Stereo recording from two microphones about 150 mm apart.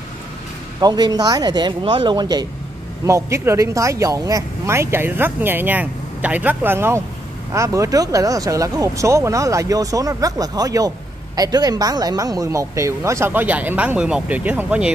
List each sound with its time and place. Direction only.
0.7 s speech: 25° right (ahead or behind); by 14.9 s 10° right (ahead or behind)